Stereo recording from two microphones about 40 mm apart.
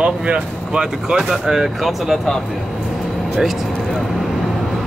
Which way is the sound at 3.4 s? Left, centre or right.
Centre.